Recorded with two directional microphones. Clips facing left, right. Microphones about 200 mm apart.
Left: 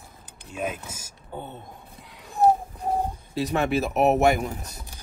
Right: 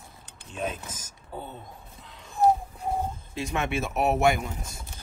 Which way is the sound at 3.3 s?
35° left (ahead or behind).